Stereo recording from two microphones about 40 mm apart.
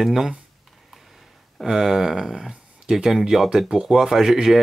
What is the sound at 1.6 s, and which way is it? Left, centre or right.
Speech, centre.